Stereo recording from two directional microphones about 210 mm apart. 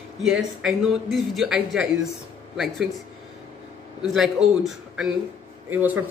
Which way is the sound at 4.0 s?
Centre (ahead or behind).